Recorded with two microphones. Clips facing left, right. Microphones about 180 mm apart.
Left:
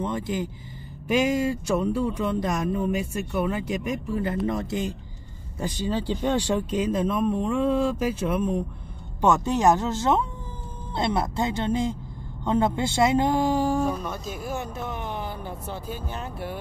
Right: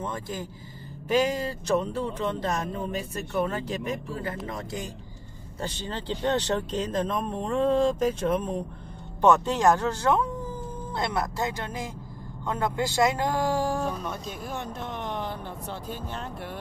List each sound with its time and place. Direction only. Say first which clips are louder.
0.0 s a woman's voice: left 6 dB; 20° left (ahead or behind)
5.6 s a woman's voice: left 6 dB; 10° left (ahead or behind)